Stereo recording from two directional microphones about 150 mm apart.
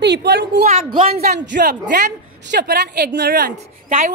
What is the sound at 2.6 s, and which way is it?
A woman's voice, 90° right.